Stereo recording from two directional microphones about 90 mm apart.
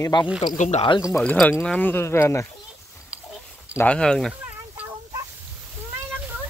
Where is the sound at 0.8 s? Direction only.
65° left (ahead or behind).